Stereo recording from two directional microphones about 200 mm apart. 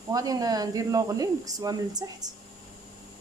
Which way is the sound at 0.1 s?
20° right (ahead or behind).